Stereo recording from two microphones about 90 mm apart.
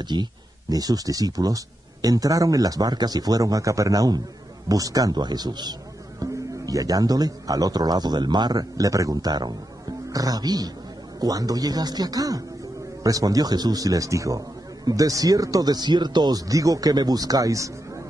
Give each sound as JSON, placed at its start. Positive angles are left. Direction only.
{"t": 0.0, "sound": "a man's voice", "side_deg": -55}